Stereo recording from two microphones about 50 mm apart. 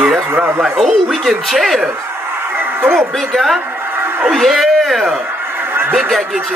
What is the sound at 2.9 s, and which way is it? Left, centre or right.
Speech, centre.